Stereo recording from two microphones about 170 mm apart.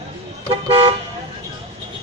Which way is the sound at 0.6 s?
30° right (ahead or behind).